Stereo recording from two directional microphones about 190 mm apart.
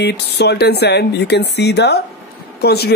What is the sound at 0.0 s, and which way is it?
Speech, 60° left (ahead or behind).